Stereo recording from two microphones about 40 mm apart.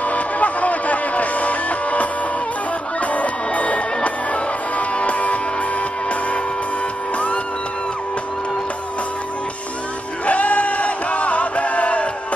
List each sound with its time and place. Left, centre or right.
0.0 s music: left
10.2 s chant: left